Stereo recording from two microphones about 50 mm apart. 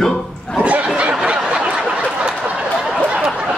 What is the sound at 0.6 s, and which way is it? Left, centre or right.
Snicker, right.